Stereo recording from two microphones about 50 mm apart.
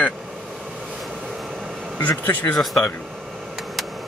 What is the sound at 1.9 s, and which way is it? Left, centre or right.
Speech, left.